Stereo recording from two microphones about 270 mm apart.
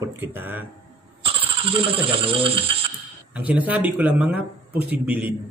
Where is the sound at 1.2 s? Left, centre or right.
Centre.